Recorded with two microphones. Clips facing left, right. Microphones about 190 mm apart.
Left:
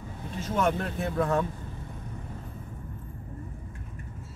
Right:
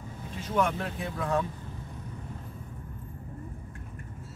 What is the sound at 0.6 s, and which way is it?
Speech, 45° left (ahead or behind).